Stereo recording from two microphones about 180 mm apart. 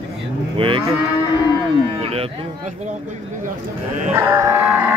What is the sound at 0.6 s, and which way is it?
Speech, 30° right (ahead or behind).